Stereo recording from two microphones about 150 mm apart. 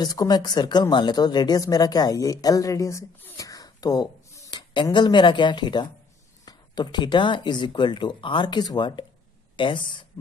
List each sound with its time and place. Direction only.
0.0 s speech: 25° left (ahead or behind)